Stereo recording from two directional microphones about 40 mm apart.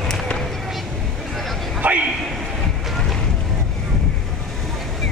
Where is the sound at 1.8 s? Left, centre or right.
Right.